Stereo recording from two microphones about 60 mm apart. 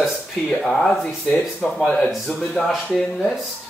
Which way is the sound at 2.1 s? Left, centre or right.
Centre.